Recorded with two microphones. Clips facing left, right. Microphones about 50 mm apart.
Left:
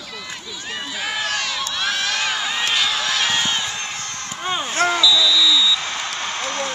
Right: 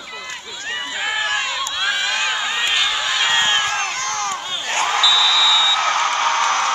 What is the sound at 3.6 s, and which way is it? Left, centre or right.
Crowd, right.